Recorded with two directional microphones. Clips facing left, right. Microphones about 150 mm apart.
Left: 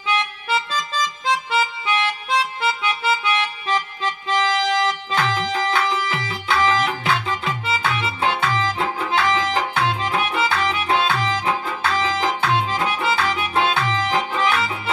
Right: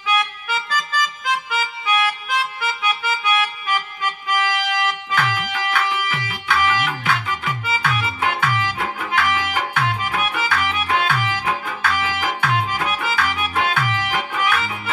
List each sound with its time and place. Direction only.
0.1 s harmonica: 30° left (ahead or behind)
6.6 s music: 25° left (ahead or behind)